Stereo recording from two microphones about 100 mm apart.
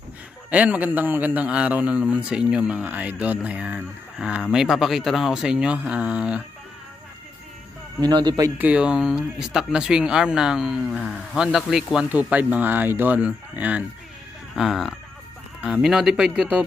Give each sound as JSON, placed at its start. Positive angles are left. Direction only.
{"t": 0.5, "sound": "a man's voice", "side_deg": -15}
{"t": 8.0, "sound": "speech", "side_deg": -45}
{"t": 8.5, "sound": "a man's voice", "side_deg": -15}
{"t": 12.1, "sound": "a man's voice", "side_deg": -15}
{"t": 14.5, "sound": "a man's voice", "side_deg": 0}